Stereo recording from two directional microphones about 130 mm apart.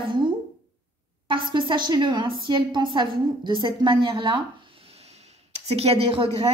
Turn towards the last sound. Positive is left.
turn(degrees=-50)  # may be behind; listen again after turning